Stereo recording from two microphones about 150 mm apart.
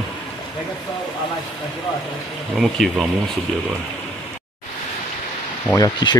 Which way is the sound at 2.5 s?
Centre (ahead or behind).